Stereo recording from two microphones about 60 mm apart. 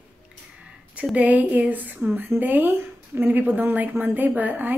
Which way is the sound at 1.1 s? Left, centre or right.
Right.